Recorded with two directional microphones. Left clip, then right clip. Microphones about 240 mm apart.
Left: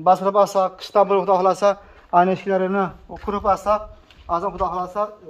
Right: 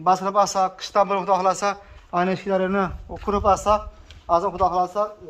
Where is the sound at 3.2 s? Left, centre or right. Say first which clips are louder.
Even; right.